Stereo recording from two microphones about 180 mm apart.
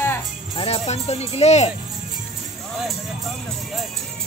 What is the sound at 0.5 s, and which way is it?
Speech, 35° left (ahead or behind).